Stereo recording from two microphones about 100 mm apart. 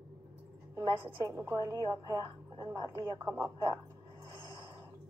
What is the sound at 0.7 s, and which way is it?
A woman's voice, 30° right (ahead or behind).